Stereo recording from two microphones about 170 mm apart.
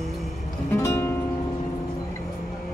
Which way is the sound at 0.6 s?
15° left (ahead or behind).